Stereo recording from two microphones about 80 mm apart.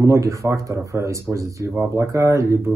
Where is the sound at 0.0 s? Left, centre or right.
Right.